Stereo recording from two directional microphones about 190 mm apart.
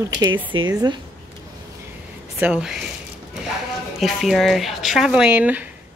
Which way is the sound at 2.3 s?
5° right (ahead or behind).